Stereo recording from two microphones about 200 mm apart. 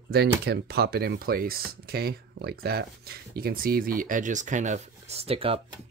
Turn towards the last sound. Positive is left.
turn(degrees=-30)  # may be behind; listen again after turning